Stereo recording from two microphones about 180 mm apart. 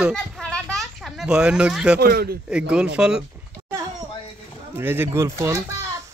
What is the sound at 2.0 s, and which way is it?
Speech, 60° right (ahead or behind).